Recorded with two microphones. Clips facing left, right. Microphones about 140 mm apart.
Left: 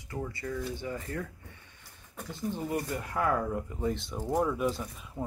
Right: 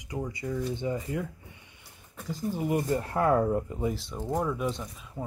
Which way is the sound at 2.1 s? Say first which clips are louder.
Right 2 dB; centre (ahead or behind).